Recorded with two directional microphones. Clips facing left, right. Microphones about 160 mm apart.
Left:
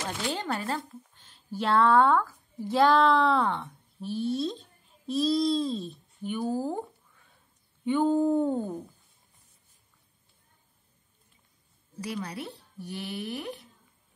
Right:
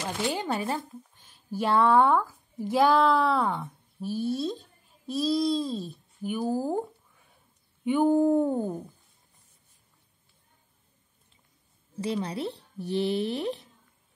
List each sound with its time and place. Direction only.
0.2 s a child's voice: 15° right (ahead or behind)
12.0 s speech: 25° right (ahead or behind)